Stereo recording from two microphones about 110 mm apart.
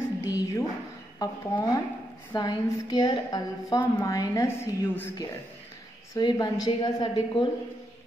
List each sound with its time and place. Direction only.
0.2 s a sound: 30° left (ahead or behind)
1.2 s a woman's voice: 35° left (ahead or behind)
6.1 s a woman's voice: 35° left (ahead or behind)